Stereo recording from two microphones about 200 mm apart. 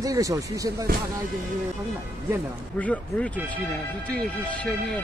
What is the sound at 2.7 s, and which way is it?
Speech, 5° left (ahead or behind).